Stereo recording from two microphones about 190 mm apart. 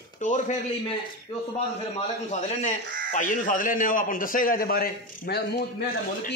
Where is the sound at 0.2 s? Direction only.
40° left (ahead or behind).